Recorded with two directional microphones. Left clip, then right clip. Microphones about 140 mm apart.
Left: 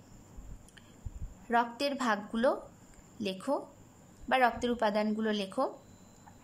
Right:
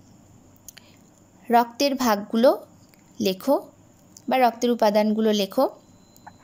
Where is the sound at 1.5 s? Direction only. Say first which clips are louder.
Right 10 dB; 25° right (ahead or behind).